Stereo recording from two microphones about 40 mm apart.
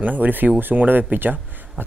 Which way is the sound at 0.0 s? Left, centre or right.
Right.